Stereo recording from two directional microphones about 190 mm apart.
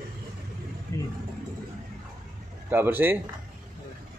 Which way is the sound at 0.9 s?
15° left (ahead or behind).